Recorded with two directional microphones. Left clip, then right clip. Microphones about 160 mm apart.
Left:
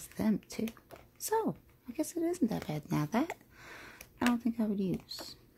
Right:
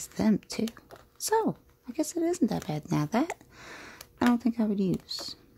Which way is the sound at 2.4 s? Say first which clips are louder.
Right 5 dB; 15° right (ahead or behind).